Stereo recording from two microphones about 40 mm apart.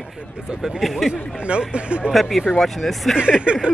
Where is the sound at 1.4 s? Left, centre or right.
Right.